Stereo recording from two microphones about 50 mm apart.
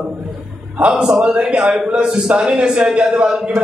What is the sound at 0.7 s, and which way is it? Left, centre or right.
A man's voice, right.